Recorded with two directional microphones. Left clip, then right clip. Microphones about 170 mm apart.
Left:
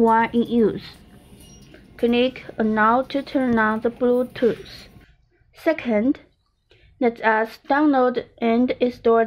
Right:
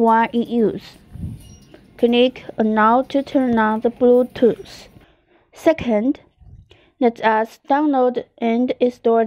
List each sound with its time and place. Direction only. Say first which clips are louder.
0.1 s a woman's voice: right 2 dB; 40° right (ahead or behind)
0.9 s train: right 8 dB; centre (ahead or behind)
2.0 s a woman's voice: right 4 dB; 40° right (ahead or behind)